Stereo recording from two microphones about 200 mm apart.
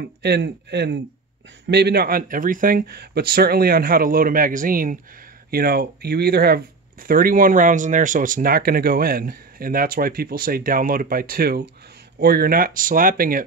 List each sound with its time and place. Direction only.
0.0 s speech: 55° right (ahead or behind)